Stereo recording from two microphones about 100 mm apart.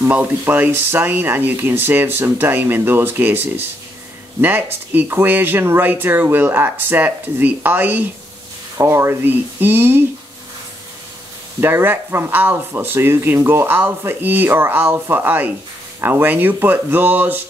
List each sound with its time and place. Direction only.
0.0 s speech: 20° right (ahead or behind)
11.6 s speech: 20° right (ahead or behind)